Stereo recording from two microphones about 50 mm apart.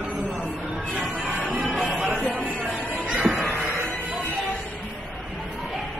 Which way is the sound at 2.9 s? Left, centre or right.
Right.